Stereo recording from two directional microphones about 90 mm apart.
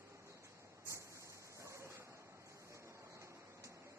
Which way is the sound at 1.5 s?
30° right (ahead or behind).